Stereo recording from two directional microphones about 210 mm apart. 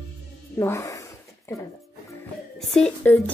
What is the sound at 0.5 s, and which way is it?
Speech, 15° left (ahead or behind).